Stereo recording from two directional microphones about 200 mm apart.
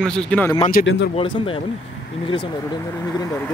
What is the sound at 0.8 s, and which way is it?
Speech, 45° left (ahead or behind).